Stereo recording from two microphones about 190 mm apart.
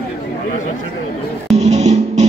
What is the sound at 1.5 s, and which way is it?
Music, 35° right (ahead or behind).